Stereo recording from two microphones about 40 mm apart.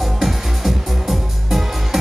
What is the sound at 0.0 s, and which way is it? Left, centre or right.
Music, centre.